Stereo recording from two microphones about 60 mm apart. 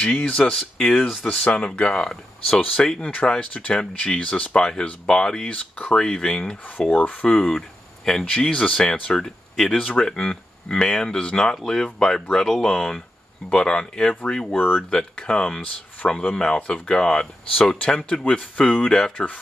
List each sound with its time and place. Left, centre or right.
0.0 s speech: centre
1.2 s speech: left
6.9 s speech: left
7.4 s speech: centre
9.2 s speech: centre